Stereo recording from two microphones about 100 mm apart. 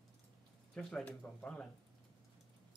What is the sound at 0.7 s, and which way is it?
Speech, 10° left (ahead or behind).